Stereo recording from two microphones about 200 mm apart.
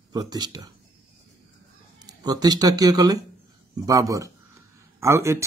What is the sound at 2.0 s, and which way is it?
Speech, 20° right (ahead or behind).